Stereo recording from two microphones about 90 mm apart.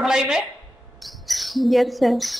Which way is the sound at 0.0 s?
10° right (ahead or behind).